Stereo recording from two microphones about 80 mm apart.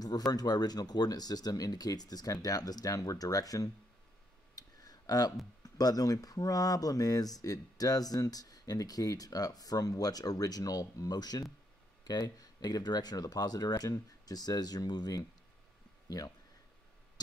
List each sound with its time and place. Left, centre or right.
0.0 s speech: left
4.6 s a sound: left
5.6 s speech: left
13.8 s speech: left